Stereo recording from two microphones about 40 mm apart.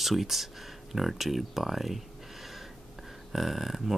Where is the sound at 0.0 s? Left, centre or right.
Centre.